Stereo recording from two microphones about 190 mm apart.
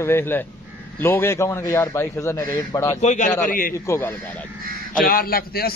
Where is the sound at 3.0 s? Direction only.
40° left (ahead or behind).